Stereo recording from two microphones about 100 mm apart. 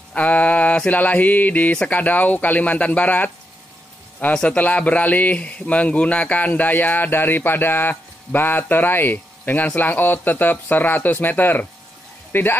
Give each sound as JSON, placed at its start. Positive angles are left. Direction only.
{"t": 0.1, "sound": "speech", "side_deg": 15}